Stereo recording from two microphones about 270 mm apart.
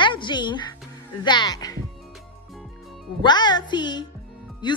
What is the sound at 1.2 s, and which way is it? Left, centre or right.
Speech, centre.